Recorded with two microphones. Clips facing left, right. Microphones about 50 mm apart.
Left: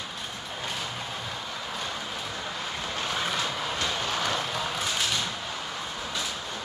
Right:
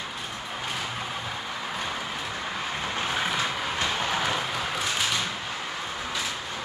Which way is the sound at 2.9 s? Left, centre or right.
Centre.